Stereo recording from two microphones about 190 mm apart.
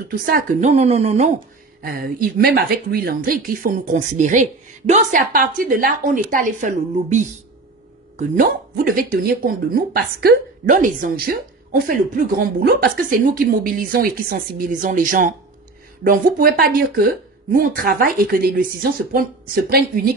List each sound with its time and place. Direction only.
0.2 s speech: 50° right (ahead or behind)
1.8 s speech: 50° right (ahead or behind)